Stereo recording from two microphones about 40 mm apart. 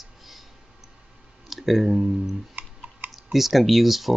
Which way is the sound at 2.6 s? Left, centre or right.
Right.